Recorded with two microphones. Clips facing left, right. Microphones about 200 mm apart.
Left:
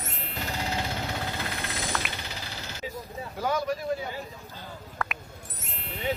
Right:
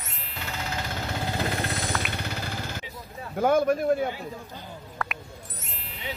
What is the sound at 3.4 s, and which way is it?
Speech, 55° right (ahead or behind).